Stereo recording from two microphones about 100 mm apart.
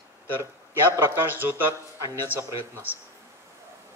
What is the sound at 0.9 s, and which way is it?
A man's voice, 20° right (ahead or behind).